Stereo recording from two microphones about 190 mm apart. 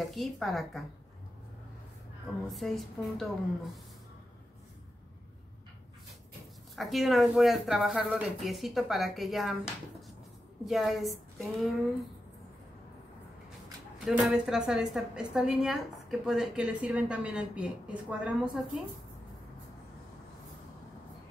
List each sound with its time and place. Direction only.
0.0 s a woman's voice: centre (ahead or behind)
2.4 s a woman's voice: centre (ahead or behind)
6.7 s a woman's voice: centre (ahead or behind)
14.0 s a woman's voice: centre (ahead or behind)